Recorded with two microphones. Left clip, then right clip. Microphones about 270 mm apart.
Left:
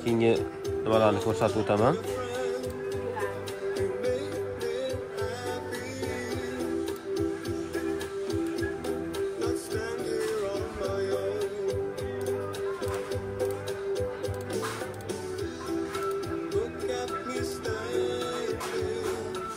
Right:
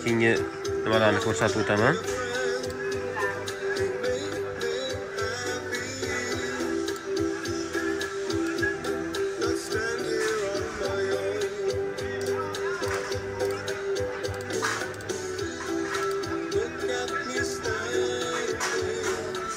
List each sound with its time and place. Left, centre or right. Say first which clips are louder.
0.1 s a man's voice: right 1 dB; centre
10.5 s music: right 2 dB; left
16.8 s music: right 3 dB; left